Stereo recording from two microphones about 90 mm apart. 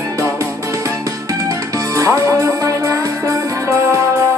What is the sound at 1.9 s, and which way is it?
Music, 40° right (ahead or behind).